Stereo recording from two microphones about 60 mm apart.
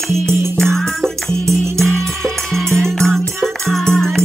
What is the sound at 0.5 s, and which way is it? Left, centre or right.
Music, centre.